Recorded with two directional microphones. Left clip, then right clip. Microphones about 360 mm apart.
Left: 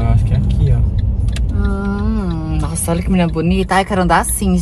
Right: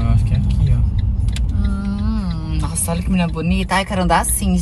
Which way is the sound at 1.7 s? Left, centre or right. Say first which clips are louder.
Left 5 dB; left.